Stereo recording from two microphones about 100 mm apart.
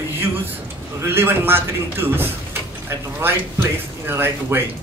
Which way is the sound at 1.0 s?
25° right (ahead or behind).